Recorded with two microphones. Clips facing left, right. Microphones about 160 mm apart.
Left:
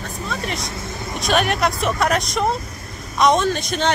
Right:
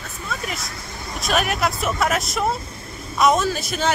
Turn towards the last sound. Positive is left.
turn(degrees=-5)  # may be behind; listen again after turning